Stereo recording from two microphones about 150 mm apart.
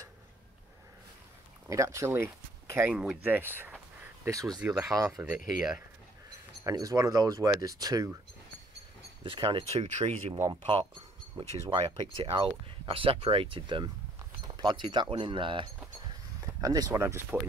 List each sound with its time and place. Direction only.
1.7 s speech: 20° right (ahead or behind)
2.9 s speech: 5° right (ahead or behind); by 4.6 s 20° right (ahead or behind)
4.6 s speech: 10° right (ahead or behind)
6.6 s speech: 20° right (ahead or behind)
9.2 s speech: 35° right (ahead or behind)
10.3 s speech: 20° right (ahead or behind)
11.3 s speech: 35° right (ahead or behind); by 17.4 s 15° right (ahead or behind)